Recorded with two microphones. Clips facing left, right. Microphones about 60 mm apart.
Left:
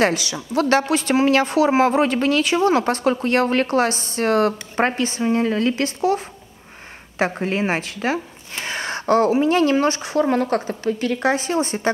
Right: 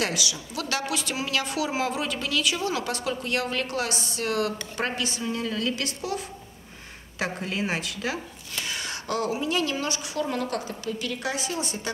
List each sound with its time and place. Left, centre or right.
0.0 s a woman's voice: left